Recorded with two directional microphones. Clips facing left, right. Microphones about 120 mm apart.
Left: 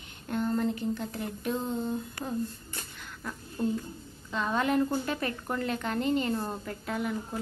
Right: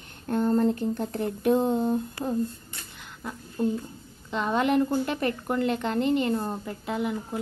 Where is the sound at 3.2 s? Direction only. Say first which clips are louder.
Right 4 dB; 20° right (ahead or behind).